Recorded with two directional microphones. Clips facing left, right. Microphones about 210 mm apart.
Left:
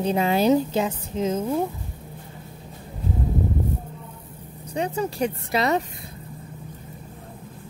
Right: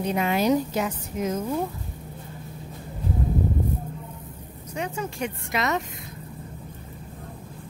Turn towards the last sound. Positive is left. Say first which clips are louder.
# left 4 dB
turn(degrees=30)  # may be behind; listen again after turning